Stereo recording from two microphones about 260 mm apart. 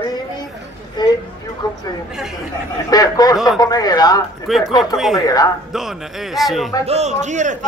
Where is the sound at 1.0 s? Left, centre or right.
Centre.